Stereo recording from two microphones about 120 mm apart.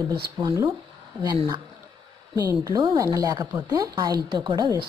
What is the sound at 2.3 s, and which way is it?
A woman's voice, 35° right (ahead or behind).